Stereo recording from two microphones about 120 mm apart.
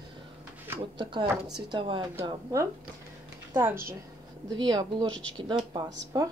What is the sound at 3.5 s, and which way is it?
Speech, 20° right (ahead or behind).